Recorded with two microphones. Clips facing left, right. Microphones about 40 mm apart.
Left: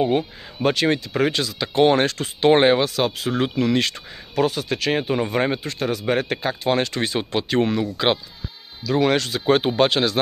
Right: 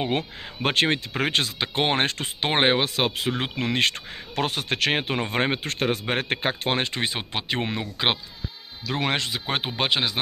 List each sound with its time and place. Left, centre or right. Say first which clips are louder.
0.6 s speech: left 3 dB; right
8.8 s speech: left 7 dB; right
9.3 s speech: left 9 dB; centre